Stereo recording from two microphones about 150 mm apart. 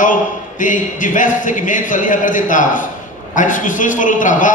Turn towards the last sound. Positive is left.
turn(degrees=60)  # may be behind; listen again after turning